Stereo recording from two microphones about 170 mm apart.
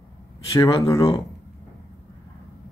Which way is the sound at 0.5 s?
20° left (ahead or behind).